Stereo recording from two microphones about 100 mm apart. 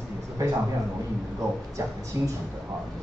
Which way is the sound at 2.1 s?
30° right (ahead or behind).